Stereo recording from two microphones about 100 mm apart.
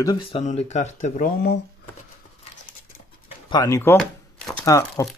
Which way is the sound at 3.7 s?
20° left (ahead or behind).